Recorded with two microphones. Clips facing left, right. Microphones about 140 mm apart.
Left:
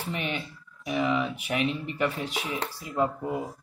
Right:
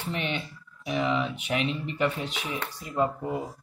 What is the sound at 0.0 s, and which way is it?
Speech, 10° left (ahead or behind).